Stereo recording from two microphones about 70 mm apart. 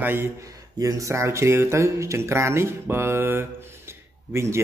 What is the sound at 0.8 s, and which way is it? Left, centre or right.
Speech, right.